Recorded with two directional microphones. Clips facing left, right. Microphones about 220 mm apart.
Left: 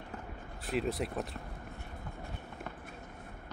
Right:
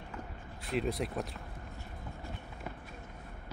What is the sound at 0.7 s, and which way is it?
Speech, centre (ahead or behind).